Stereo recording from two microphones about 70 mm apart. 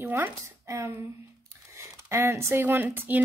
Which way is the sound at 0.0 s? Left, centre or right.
Right.